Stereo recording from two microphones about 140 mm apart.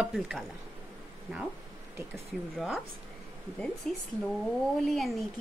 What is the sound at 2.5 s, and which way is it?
Speech, centre (ahead or behind).